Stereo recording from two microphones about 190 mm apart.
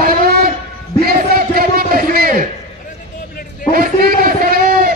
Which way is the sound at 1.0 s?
50° right (ahead or behind).